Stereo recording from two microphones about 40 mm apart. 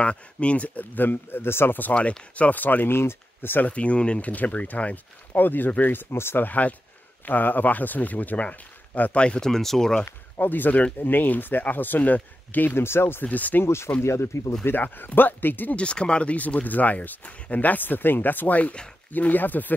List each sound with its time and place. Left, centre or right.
0.0 s speech: left
0.9 s speech: left
2.0 s speech: left
2.9 s speech: left
3.6 s speech: left
5.3 s speech: left
6.4 s speech: left
9.4 s speech: centre
10.0 s speech: left
12.7 s speech: left
13.2 s speech: left
13.6 s speech: left
14.8 s speech: left
15.7 s speech: left